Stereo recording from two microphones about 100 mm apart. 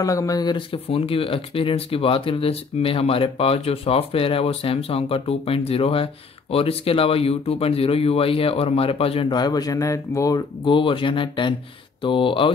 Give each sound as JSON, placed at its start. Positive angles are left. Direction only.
{"t": 0.0, "sound": "speech", "side_deg": 35}
{"t": 0.8, "sound": "speech", "side_deg": 70}
{"t": 9.3, "sound": "speech", "side_deg": 45}
{"t": 10.6, "sound": "speech", "side_deg": 55}